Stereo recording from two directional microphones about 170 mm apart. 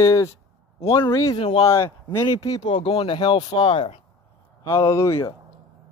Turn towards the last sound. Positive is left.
turn(degrees=15)  # may be behind; listen again after turning